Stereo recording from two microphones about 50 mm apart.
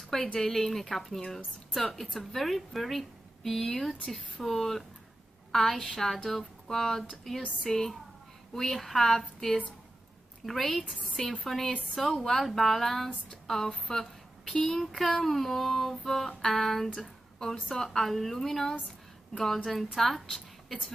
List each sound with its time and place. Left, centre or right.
0.0 s a woman's voice: centre
13.3 s a sound: centre
13.9 s a woman's voice: centre